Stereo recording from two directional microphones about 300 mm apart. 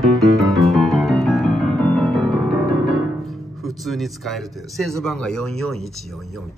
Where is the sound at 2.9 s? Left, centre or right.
Centre.